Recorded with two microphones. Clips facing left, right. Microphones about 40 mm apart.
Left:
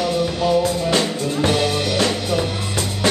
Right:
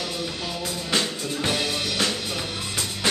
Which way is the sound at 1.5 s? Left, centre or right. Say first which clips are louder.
Left 7 dB; centre.